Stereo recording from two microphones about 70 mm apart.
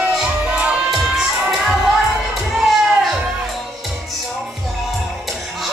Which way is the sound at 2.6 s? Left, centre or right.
Centre.